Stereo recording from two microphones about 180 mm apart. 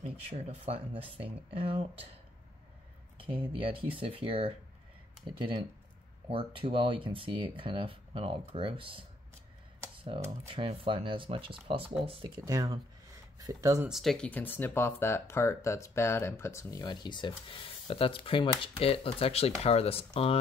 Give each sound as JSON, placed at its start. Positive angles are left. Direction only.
{"t": 0.3, "sound": "speech", "side_deg": -35}
{"t": 3.2, "sound": "speech", "side_deg": -30}
{"t": 6.2, "sound": "speech", "side_deg": -30}
{"t": 10.0, "sound": "speech", "side_deg": -30}
{"t": 12.4, "sound": "speech", "side_deg": -20}
{"t": 13.8, "sound": "speech", "side_deg": 0}